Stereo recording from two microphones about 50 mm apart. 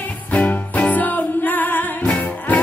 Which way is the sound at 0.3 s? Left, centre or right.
Left.